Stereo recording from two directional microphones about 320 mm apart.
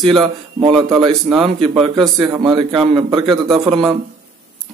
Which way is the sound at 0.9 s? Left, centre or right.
Centre.